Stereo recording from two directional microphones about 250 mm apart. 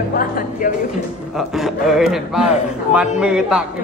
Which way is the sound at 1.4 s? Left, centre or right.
Centre.